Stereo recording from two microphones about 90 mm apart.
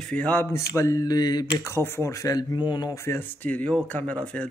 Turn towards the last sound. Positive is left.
turn(degrees=15)  # may be behind; listen again after turning